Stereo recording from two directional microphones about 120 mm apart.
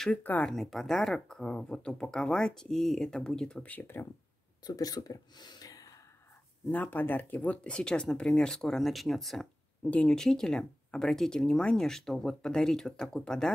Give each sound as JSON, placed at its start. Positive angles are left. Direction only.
{"t": 0.0, "sound": "speech", "side_deg": 10}
{"t": 0.5, "sound": "speech", "side_deg": 0}
{"t": 4.6, "sound": "speech", "side_deg": 30}
{"t": 6.7, "sound": "speech", "side_deg": 15}